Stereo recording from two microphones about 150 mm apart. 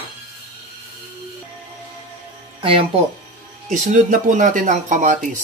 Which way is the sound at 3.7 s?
60° right (ahead or behind).